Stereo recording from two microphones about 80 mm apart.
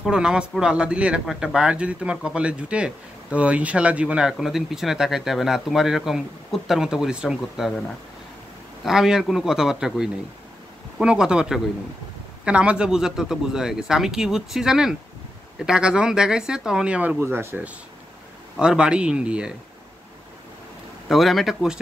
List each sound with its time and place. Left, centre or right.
0.0 s speech: centre
8.8 s speech: centre
17.2 s speech: right
18.6 s speech: centre
21.1 s speech: centre